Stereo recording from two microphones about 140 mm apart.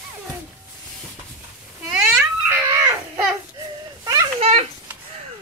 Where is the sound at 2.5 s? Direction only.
25° right (ahead or behind).